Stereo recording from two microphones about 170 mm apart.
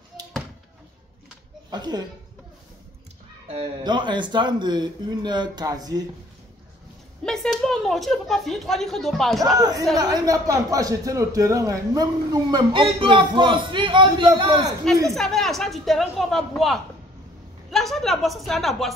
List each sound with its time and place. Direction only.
1.7 s speech: 25° right (ahead or behind)
3.4 s speech: 30° right (ahead or behind)
7.2 s speech: centre (ahead or behind)
9.4 s speech: 20° right (ahead or behind)
15.0 s a woman's voice: centre (ahead or behind)